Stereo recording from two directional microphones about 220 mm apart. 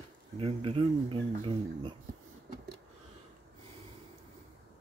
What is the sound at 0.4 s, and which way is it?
Speech, 25° right (ahead or behind).